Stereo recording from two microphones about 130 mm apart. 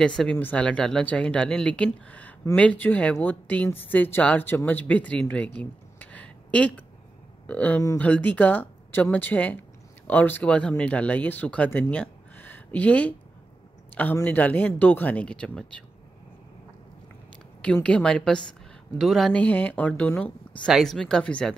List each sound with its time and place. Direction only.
0.0 s speech: 5° left (ahead or behind)
5.6 s a sound: 10° left (ahead or behind)
7.4 s speech: 10° left (ahead or behind)
17.6 s speech: 10° left (ahead or behind)
19.4 s speech: 10° left (ahead or behind)
20.6 s speech: centre (ahead or behind)